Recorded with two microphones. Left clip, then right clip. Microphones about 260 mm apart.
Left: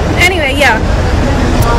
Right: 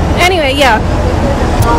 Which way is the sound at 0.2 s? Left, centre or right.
Centre.